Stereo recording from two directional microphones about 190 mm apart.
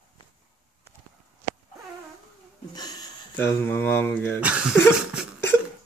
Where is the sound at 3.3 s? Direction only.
15° left (ahead or behind).